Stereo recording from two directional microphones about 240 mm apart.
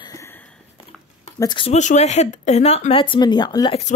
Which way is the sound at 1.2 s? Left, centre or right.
Centre.